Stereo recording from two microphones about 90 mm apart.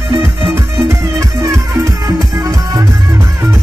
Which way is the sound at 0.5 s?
35° right (ahead or behind).